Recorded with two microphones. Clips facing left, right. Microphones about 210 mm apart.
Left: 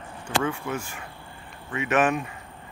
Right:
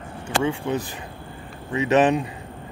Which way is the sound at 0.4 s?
30° right (ahead or behind).